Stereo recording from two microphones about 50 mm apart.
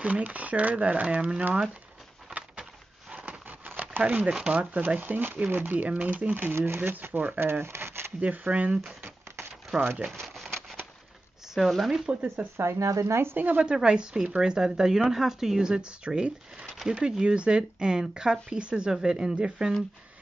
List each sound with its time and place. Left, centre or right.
0.0 s speech: right
3.1 s a sound: right
4.0 s speech: right
4.8 s speech: right
6.5 s speech: right
8.2 s speech: right
9.7 s speech: centre
10.2 s shuffling cards: centre
11.5 s speech: centre
12.1 s speech: right
12.5 s speech: right
13.4 s speech: right
13.7 s speech: centre